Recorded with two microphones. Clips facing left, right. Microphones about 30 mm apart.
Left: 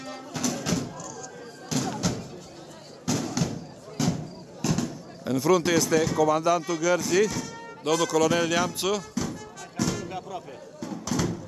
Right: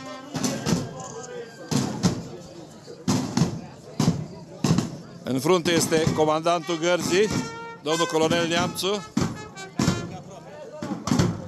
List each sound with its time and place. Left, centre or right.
0.1 s a sound: centre
3.1 s fireworks: centre
4.6 s fireworks: right
5.2 s speech: right
7.8 s speech: right
9.1 s music: right
10.0 s music: left
10.8 s a sound: right